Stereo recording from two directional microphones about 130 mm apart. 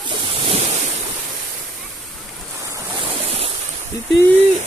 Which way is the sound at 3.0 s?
50° right (ahead or behind).